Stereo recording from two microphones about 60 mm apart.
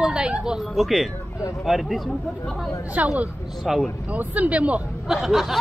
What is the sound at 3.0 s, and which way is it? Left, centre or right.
Speech, right.